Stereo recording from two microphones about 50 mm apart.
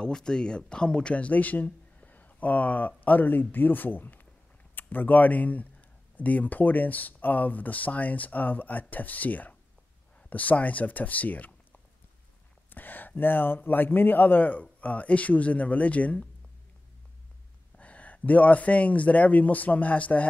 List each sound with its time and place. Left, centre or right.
0.0 s speech: centre; by 11.5 s left
12.6 s speech: left
17.7 s speech: left